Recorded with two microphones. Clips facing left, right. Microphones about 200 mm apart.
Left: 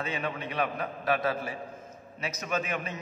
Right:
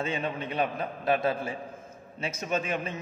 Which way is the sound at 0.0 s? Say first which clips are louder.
Right 2 dB; 25° right (ahead or behind).